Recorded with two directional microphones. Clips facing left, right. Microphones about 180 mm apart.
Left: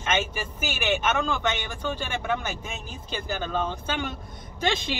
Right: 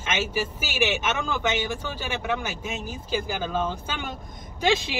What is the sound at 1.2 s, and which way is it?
Speech, 10° right (ahead or behind).